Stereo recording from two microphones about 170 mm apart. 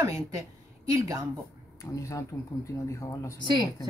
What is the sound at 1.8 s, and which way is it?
Speech, 20° left (ahead or behind).